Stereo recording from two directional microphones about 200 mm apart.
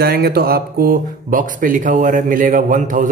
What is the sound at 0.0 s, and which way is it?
A man's voice, 50° right (ahead or behind).